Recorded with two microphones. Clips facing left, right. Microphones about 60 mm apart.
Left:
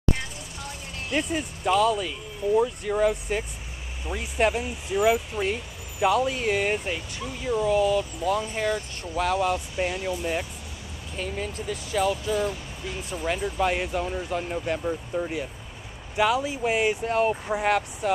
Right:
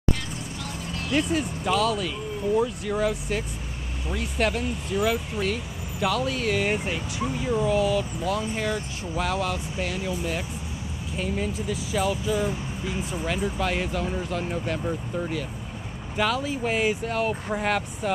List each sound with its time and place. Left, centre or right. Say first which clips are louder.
1.1 s speech: right 3 dB; centre
6.8 s speech: right 3 dB; centre
7.6 s speech: left 2 dB; centre
9.4 s speech: left 3 dB; centre
11.1 s speech: right 3 dB; centre
13.2 s speech: left 1 dB; centre
13.6 s speech: left 2 dB; centre